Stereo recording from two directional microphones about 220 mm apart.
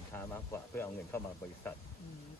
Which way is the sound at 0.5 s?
10° left (ahead or behind).